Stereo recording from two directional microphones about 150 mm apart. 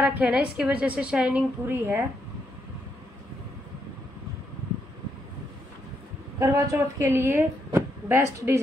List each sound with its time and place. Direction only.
0.0 s a woman's voice: 10° right (ahead or behind)
6.4 s a woman's voice: 20° right (ahead or behind)